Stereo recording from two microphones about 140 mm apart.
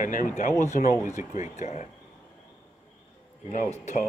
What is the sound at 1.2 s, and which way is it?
Speech, 60° left (ahead or behind).